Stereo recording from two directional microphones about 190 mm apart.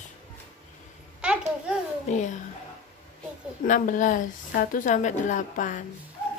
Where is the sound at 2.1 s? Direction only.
40° left (ahead or behind).